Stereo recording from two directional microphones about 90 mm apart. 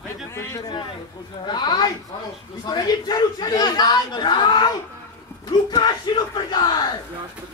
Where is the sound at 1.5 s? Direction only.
55° left (ahead or behind).